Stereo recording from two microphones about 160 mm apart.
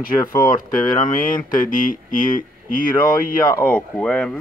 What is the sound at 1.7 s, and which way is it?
Speech, 55° left (ahead or behind).